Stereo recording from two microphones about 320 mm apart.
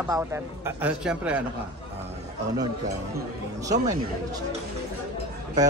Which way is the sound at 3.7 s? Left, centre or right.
Centre.